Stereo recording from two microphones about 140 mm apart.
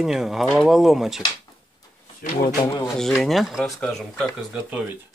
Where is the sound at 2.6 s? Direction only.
25° left (ahead or behind).